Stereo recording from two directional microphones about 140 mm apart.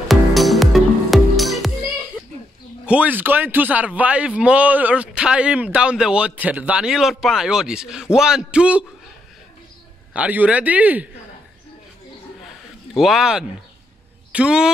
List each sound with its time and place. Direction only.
0.1 s music: centre (ahead or behind)
2.8 s a man's voice: 10° right (ahead or behind)
10.1 s a man's voice: 10° right (ahead or behind)
12.9 s speech: centre (ahead or behind)